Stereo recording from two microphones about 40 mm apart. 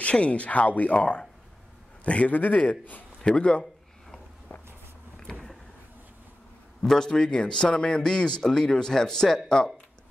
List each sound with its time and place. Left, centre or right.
0.0 s speech: left
0.9 s speech: left
3.2 s a man's voice: left
6.8 s a man's voice: centre